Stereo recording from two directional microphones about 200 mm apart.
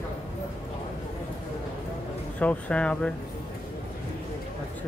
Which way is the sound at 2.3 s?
5° left (ahead or behind).